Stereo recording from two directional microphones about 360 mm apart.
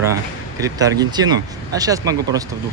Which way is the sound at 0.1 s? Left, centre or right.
Centre.